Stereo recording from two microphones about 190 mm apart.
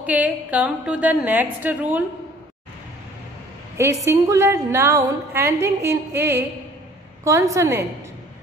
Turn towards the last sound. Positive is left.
turn(degrees=-15)  # may be behind; listen again after turning